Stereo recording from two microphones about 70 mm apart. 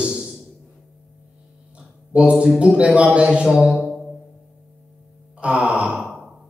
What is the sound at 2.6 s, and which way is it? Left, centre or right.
A man's voice, centre.